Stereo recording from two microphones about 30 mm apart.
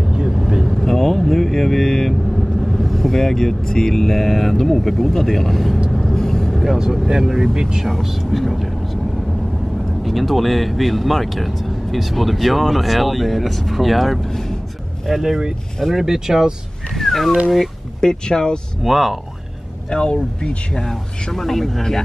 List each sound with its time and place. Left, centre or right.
0.3 s vehicle: centre
0.7 s vehicle: centre
2.3 s speech: centre
5.9 s vehicle: centre
7.1 s speech: centre
7.8 s speech: centre
10.0 s speech: centre
16.3 s speech: centre
16.9 s cat: centre
18.0 s speech: left
18.8 s speech: centre
19.9 s speech: left
20.8 s speech: centre